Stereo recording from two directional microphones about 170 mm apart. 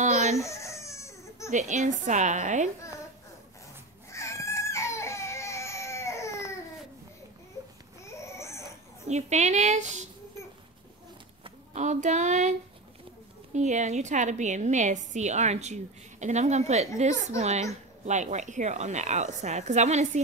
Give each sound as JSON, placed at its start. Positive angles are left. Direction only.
{"t": 0.0, "sound": "crying", "side_deg": -45}
{"t": 0.4, "sound": "baby cry", "side_deg": 15}
{"t": 1.5, "sound": "a woman's voice", "side_deg": -45}
{"t": 4.1, "sound": "baby cry", "side_deg": 15}
{"t": 8.0, "sound": "baby cry", "side_deg": 15}
{"t": 9.0, "sound": "a woman's voice", "side_deg": -45}
{"t": 11.4, "sound": "a woman's voice", "side_deg": -45}